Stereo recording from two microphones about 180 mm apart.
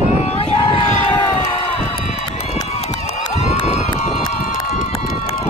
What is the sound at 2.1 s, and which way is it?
Run, 40° left (ahead or behind).